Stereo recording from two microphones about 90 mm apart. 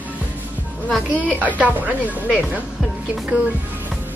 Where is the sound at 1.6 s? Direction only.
15° right (ahead or behind).